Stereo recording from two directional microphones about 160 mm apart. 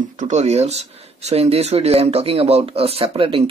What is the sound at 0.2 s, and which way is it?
Speech, 45° right (ahead or behind).